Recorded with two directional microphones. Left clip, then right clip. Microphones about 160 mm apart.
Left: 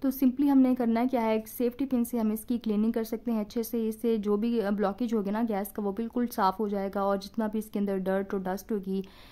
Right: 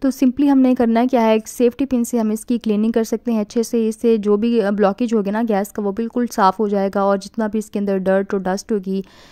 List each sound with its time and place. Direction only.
0.0 s a woman's voice: 40° right (ahead or behind)